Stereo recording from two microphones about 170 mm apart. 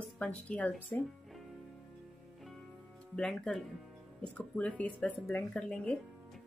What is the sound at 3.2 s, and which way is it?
Speech, centre (ahead or behind).